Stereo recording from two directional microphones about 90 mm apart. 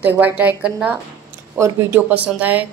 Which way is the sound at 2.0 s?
15° right (ahead or behind).